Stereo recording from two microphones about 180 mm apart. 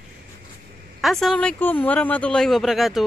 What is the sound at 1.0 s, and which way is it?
Speech, centre (ahead or behind).